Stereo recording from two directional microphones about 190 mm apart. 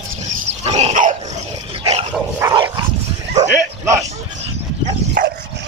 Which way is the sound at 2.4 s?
25° right (ahead or behind).